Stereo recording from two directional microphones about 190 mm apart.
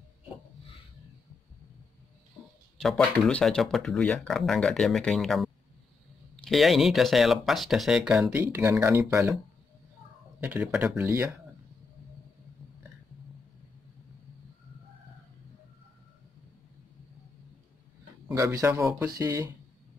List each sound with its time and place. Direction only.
2.8 s speech: centre (ahead or behind); by 9.4 s 15° right (ahead or behind)
10.4 s speech: 10° right (ahead or behind)
18.3 s speech: 15° right (ahead or behind)